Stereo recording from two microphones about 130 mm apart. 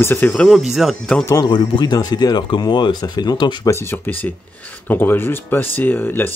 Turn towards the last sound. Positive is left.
turn(degrees=15)  # may be behind; listen again after turning